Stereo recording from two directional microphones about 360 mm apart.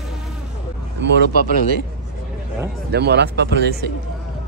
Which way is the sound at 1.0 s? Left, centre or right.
Right.